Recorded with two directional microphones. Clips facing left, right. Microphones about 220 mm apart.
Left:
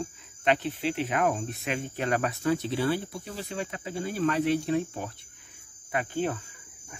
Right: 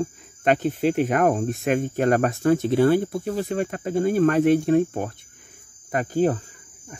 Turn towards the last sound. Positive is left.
turn(degrees=-40)  # may be behind; listen again after turning